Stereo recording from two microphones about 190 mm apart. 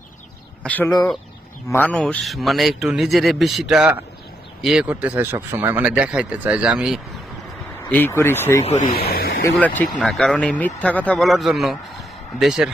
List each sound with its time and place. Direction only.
0.7 s a man's voice: 10° left (ahead or behind)
7.9 s speech: 10° left (ahead or behind)
8.9 s a sound: 55° left (ahead or behind)
9.5 s a man's voice: 10° left (ahead or behind)